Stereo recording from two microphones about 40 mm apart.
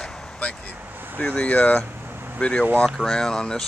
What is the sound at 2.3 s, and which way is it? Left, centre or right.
Speech, left.